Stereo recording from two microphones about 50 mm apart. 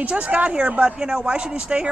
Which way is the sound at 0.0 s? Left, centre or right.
Right.